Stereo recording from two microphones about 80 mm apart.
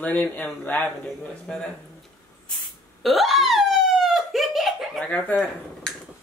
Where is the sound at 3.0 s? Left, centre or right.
Centre.